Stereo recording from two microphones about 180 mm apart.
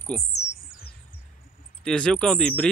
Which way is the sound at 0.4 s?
50° left (ahead or behind).